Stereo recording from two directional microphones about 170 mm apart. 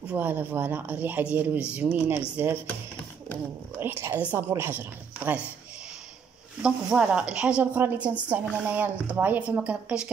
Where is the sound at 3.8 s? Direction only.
15° right (ahead or behind).